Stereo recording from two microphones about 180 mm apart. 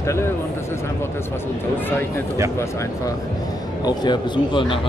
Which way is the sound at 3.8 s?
25° left (ahead or behind).